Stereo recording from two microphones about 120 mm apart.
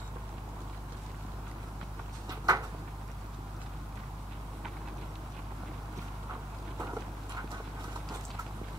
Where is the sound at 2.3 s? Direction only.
35° right (ahead or behind).